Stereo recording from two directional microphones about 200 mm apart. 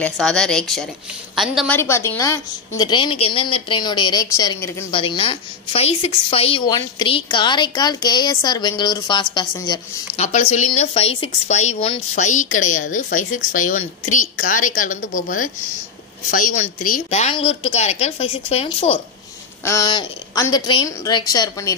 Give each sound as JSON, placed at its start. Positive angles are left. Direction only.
{"t": 0.0, "sound": "speech", "side_deg": 5}
{"t": 1.7, "sound": "a woman's voice", "side_deg": 15}
{"t": 19.6, "sound": "a woman's voice", "side_deg": 15}